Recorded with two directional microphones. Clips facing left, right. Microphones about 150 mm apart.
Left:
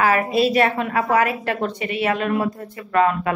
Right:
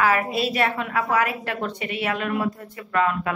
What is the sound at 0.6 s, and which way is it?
A woman's voice, 40° left (ahead or behind).